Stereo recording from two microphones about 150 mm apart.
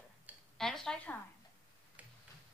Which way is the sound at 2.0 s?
10° right (ahead or behind).